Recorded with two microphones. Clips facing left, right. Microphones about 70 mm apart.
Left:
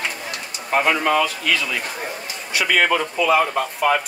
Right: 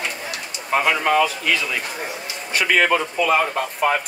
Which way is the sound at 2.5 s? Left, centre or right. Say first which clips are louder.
Right 1 dB; right.